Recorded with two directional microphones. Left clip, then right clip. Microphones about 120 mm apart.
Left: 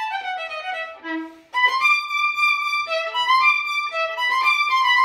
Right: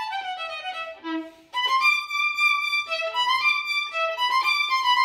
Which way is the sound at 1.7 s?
20° right (ahead or behind).